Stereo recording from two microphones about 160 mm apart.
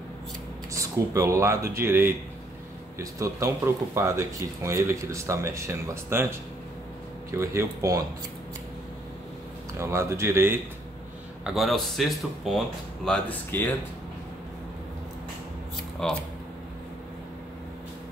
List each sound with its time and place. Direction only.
0.7 s speech: 20° right (ahead or behind)
7.2 s speech: 20° right (ahead or behind)
9.8 s speech: 15° right (ahead or behind)
11.4 s speech: centre (ahead or behind)
16.0 s speech: 5° left (ahead or behind)